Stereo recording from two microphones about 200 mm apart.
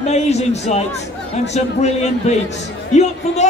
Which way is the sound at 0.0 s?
35° left (ahead or behind).